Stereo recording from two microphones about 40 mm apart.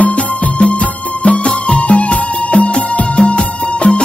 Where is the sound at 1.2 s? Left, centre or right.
Left.